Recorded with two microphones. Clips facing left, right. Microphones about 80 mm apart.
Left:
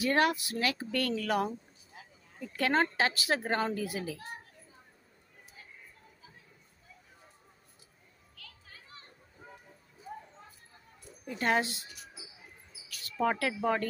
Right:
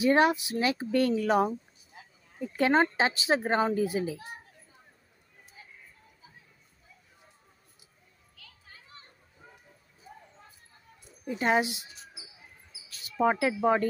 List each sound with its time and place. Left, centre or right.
0.0 s a child's voice: right
8.4 s children playing: centre
11.2 s speech: centre
13.0 s speech: centre